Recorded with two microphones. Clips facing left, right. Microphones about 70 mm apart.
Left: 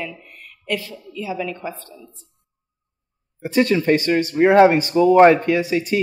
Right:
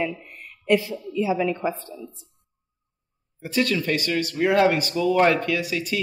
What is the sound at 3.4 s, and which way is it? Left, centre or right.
A man's voice, left.